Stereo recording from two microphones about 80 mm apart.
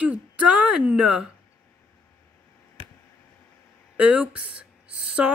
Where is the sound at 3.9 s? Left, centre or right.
Centre.